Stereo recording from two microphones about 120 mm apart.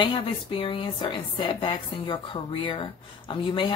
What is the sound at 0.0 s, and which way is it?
Speech, 45° left (ahead or behind).